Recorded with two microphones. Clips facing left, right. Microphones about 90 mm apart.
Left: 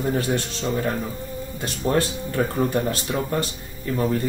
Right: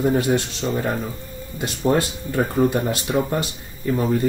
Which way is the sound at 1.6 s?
20° right (ahead or behind).